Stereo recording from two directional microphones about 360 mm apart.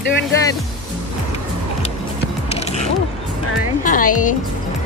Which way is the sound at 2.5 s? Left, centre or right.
Centre.